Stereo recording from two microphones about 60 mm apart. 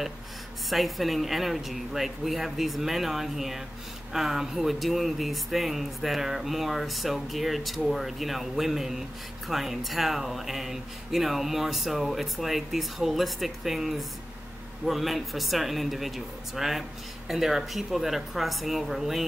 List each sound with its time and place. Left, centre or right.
0.7 s speech: centre